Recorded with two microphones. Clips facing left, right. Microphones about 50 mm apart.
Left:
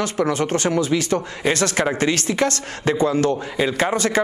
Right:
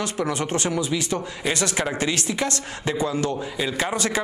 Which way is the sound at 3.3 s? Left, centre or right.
Left.